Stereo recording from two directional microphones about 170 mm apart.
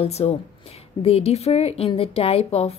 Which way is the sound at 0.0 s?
35° left (ahead or behind).